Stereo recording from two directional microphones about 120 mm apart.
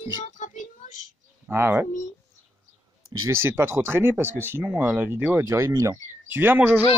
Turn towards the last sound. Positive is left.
turn(degrees=-15)  # may be behind; listen again after turning